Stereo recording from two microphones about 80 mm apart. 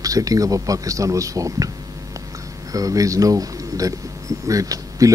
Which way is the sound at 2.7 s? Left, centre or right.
Right.